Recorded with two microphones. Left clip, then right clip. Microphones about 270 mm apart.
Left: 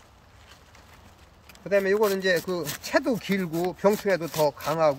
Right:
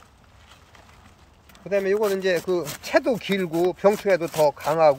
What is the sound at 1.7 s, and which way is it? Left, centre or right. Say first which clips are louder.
Speech: even; centre.